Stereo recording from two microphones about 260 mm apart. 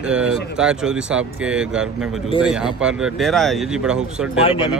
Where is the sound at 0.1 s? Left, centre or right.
Centre.